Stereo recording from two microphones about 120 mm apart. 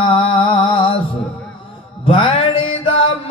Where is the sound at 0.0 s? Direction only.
50° left (ahead or behind).